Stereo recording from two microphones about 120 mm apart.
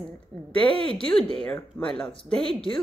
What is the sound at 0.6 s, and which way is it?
Speech, 10° left (ahead or behind).